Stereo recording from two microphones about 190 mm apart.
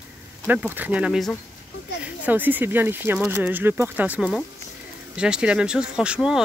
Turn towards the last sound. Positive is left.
turn(degrees=-5)  # may be behind; listen again after turning